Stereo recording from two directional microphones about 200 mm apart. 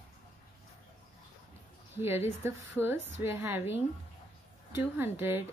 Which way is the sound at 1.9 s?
10° right (ahead or behind).